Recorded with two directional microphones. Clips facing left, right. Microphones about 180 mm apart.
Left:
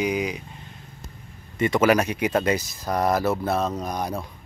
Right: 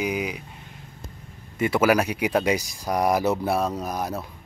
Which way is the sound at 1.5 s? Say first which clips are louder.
Left 1 dB; 10° right (ahead or behind).